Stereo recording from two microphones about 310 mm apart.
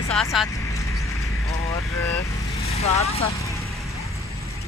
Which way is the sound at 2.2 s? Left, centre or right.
Centre.